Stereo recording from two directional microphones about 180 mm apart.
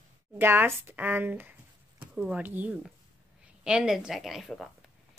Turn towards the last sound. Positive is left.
turn(degrees=0)  # may be behind; listen again after turning